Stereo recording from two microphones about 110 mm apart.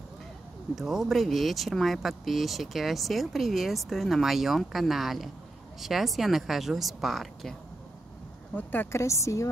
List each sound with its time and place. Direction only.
0.7 s speech: centre (ahead or behind)
8.5 s a woman's voice: 20° left (ahead or behind)